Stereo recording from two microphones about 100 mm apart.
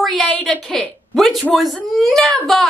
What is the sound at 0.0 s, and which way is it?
Speech, centre (ahead or behind).